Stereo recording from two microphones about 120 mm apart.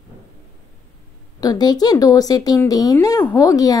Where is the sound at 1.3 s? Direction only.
35° left (ahead or behind).